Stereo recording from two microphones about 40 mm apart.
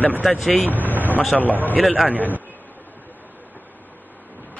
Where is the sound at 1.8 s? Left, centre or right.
Centre.